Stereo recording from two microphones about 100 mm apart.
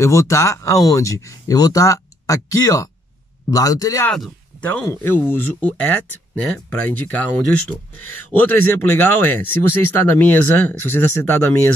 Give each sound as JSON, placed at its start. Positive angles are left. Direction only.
{"t": 0.0, "sound": "speech", "side_deg": 30}
{"t": 4.1, "sound": "speech", "side_deg": 10}
{"t": 4.8, "sound": "speech", "side_deg": 25}